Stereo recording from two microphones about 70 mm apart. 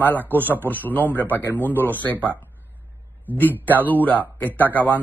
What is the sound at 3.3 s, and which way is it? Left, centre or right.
A man's voice, left.